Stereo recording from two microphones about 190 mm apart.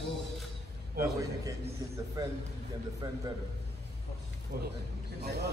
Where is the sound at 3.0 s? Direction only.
20° right (ahead or behind).